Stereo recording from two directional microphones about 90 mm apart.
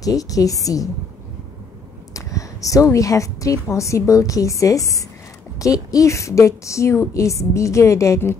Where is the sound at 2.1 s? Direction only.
40° left (ahead or behind).